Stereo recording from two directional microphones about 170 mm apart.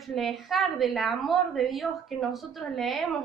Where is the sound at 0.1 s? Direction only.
Centre (ahead or behind).